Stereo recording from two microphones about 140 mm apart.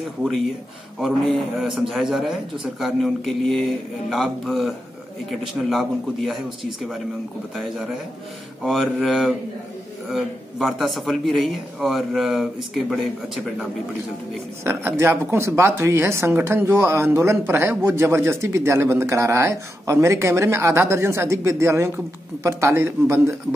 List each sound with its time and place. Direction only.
1.0 s a man's voice: centre (ahead or behind)
8.6 s a man's voice: centre (ahead or behind)
14.6 s speech: 20° right (ahead or behind)